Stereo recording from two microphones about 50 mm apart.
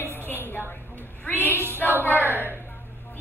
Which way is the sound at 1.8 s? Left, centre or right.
Left.